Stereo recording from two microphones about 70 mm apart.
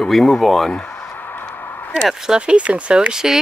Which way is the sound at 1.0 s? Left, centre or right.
Left.